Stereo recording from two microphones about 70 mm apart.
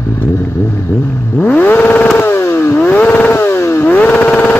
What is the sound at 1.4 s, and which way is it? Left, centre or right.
Vehicle, left.